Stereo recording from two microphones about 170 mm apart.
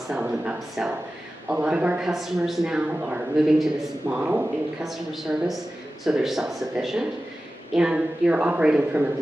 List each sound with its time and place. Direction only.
0.1 s a man's voice: 5° right (ahead or behind)